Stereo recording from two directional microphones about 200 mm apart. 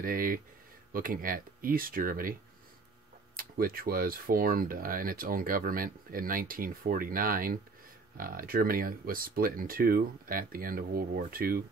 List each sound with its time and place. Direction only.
0.0 s speech: 45° right (ahead or behind)
3.3 s speech: 45° right (ahead or behind)